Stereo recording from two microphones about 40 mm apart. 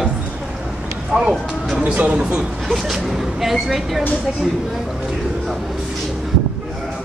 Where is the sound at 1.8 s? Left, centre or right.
Right.